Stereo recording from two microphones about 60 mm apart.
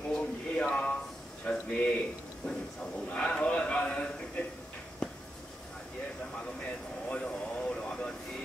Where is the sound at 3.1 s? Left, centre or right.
Centre.